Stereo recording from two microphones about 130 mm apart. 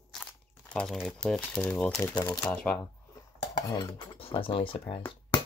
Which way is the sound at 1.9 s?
30° left (ahead or behind).